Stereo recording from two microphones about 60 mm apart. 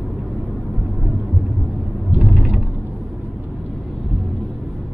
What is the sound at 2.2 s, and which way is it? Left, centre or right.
Vehicle, centre.